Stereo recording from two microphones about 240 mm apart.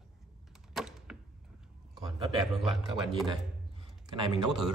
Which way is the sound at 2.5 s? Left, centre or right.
Centre.